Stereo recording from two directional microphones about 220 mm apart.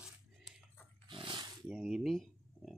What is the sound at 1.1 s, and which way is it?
Dog, 25° right (ahead or behind).